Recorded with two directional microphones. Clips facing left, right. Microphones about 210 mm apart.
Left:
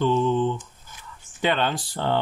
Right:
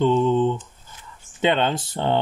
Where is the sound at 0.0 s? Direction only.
20° right (ahead or behind).